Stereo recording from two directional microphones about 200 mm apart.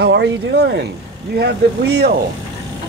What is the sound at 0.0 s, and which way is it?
Speech, 60° right (ahead or behind).